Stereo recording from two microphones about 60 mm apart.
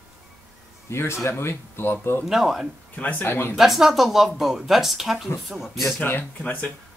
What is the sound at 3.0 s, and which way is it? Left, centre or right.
Speech, left.